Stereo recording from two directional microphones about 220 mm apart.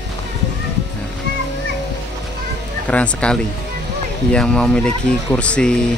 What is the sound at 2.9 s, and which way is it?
Speech, 5° left (ahead or behind).